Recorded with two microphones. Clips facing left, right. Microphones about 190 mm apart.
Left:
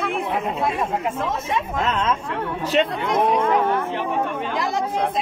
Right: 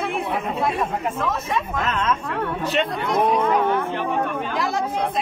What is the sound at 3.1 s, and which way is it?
Speech, centre (ahead or behind).